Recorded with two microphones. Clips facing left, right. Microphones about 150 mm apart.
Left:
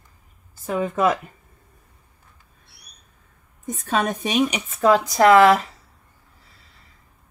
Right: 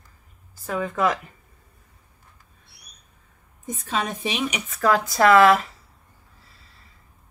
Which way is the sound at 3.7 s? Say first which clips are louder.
Left 5 dB; 45° left (ahead or behind).